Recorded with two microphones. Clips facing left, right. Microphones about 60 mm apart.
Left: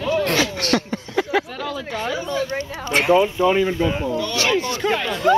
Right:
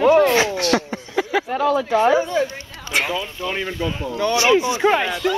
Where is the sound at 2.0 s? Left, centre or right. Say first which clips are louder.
Right 4 dB; right.